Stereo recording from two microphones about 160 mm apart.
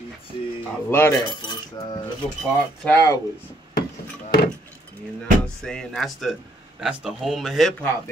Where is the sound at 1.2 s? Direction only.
30° left (ahead or behind).